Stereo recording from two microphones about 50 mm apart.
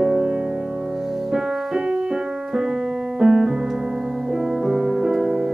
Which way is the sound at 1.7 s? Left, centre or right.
Centre.